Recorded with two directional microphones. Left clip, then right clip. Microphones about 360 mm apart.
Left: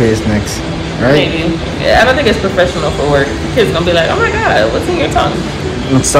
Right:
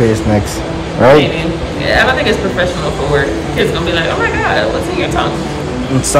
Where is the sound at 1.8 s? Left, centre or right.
Centre.